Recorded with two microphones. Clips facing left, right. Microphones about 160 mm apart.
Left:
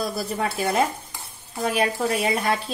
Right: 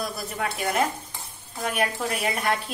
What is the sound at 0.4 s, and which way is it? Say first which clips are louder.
A woman's voice: left 2 dB; 30° left (ahead or behind).